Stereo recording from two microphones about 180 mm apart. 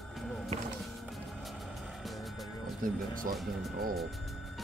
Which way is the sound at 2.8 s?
50° right (ahead or behind).